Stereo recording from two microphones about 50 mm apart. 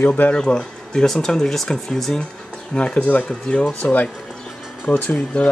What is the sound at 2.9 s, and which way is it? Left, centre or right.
Speech, left.